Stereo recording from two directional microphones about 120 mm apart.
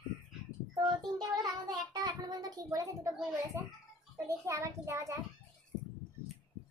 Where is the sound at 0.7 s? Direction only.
35° right (ahead or behind).